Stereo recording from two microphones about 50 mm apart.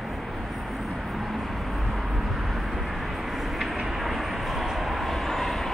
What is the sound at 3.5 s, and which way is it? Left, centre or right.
Vehicle, centre.